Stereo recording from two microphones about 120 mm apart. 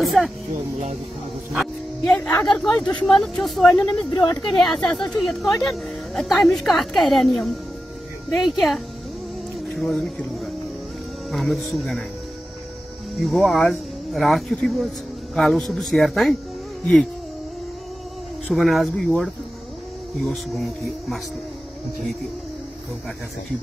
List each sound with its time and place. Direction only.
0.0 s speech: centre (ahead or behind)
1.6 s a woman's voice: 5° left (ahead or behind)
4.1 s speech: 40° left (ahead or behind)
4.6 s a woman's voice: 5° left (ahead or behind)
13.2 s a woman's voice: centre (ahead or behind)
18.5 s a woman's voice: centre (ahead or behind)